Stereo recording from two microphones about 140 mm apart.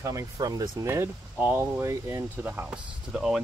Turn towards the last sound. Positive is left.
turn(degrees=-5)  # may be behind; listen again after turning